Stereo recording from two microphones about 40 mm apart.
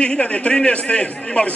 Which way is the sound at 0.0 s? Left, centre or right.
Left.